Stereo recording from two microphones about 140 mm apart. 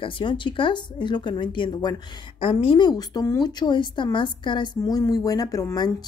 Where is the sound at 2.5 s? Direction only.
40° left (ahead or behind); by 5.9 s 25° left (ahead or behind).